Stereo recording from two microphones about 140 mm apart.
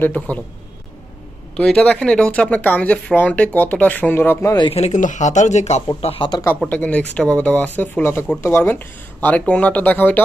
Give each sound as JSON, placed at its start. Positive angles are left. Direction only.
{"t": 0.0, "sound": "speech", "side_deg": 10}
{"t": 1.6, "sound": "speech", "side_deg": 10}
{"t": 4.6, "sound": "speech", "side_deg": 45}
{"t": 5.9, "sound": "speech", "side_deg": 40}
{"t": 6.6, "sound": "speech", "side_deg": 10}